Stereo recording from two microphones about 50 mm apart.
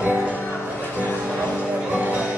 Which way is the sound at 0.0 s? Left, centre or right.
Right.